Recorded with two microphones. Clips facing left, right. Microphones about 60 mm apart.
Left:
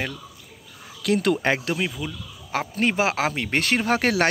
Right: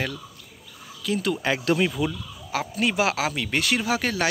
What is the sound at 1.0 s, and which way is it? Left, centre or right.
Speech, left.